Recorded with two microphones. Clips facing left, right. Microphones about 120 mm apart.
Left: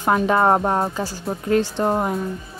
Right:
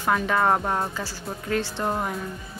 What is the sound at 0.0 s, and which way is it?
Speech, 25° left (ahead or behind).